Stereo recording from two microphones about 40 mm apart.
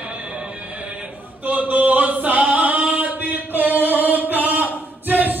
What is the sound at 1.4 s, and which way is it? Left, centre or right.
Singing, right.